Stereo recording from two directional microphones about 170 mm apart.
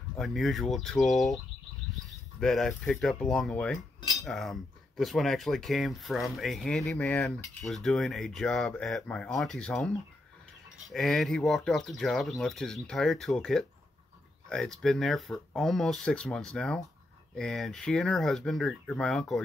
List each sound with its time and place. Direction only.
0.2 s speech: centre (ahead or behind)